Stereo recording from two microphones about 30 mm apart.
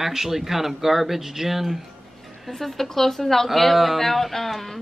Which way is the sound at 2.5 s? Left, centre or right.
Centre.